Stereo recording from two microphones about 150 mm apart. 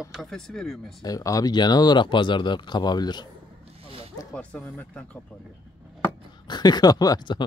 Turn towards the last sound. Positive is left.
turn(degrees=30)  # may be behind; listen again after turning